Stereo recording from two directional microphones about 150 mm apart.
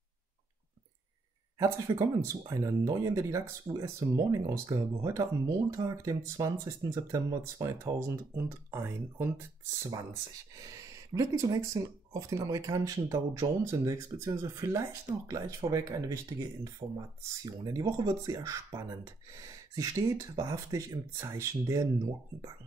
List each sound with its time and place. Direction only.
1.6 s speech: 20° right (ahead or behind)
11.1 s speech: 20° right (ahead or behind)